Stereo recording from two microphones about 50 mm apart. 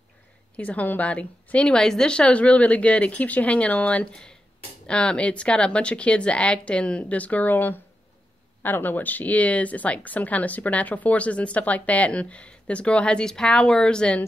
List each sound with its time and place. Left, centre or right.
0.6 s speech: left
4.1 s speech: centre